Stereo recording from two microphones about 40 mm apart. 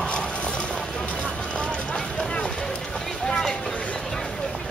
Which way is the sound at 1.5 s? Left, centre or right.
Left.